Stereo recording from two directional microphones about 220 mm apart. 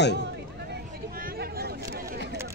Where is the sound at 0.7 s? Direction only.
45° right (ahead or behind).